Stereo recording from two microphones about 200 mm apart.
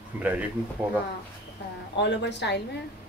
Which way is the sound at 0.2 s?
5° right (ahead or behind).